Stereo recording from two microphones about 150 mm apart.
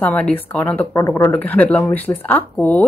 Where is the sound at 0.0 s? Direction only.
10° left (ahead or behind).